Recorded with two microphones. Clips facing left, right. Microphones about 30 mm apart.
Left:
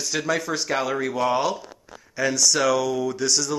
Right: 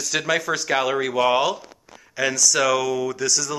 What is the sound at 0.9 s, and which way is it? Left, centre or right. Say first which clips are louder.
Speech: right 3 dB; right.